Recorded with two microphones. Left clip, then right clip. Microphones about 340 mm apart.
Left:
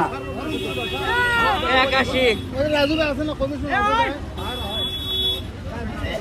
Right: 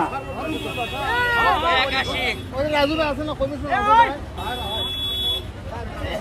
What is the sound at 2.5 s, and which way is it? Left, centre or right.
Speech, right.